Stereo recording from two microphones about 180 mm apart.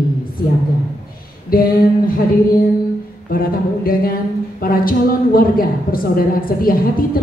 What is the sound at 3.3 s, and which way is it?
Speech, 50° left (ahead or behind).